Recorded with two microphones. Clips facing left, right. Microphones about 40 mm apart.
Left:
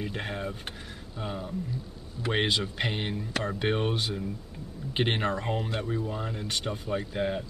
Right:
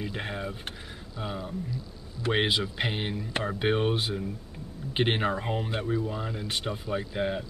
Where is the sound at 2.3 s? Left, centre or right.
Centre.